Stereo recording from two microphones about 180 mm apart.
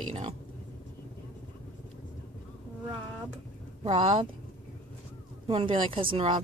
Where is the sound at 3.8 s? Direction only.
30° right (ahead or behind).